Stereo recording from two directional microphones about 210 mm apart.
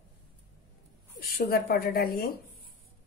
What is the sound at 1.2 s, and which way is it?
Speech, 45° left (ahead or behind).